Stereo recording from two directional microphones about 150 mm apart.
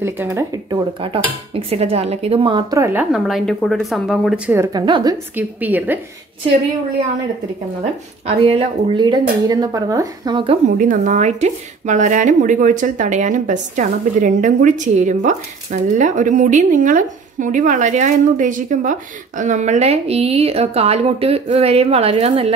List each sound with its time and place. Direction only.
0.0 s speech: 15° right (ahead or behind)
1.5 s speech: 40° right (ahead or behind)
2.7 s a woman's voice: 15° right (ahead or behind)
3.1 s speech: centre (ahead or behind)
4.6 s speech: 30° right (ahead or behind)
5.3 s a woman's voice: 10° right (ahead or behind)
8.3 s speech: 40° right (ahead or behind)
10.8 s a woman's voice: 60° right (ahead or behind); by 22.3 s 40° right (ahead or behind)